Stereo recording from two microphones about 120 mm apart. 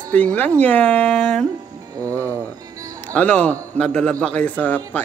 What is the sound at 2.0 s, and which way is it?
Speech, 25° right (ahead or behind).